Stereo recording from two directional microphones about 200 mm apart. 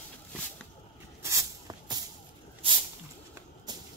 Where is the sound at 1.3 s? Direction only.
20° right (ahead or behind).